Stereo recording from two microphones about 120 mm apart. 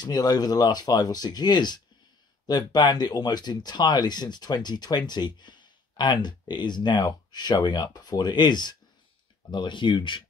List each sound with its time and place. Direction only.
0.0 s speech: 35° left (ahead or behind)